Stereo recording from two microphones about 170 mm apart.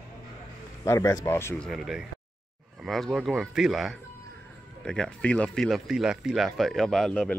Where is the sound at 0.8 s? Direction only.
20° left (ahead or behind).